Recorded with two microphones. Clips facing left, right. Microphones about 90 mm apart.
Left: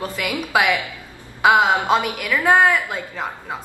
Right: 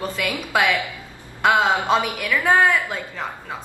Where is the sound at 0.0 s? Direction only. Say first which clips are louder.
Left 1 dB; 5° left (ahead or behind).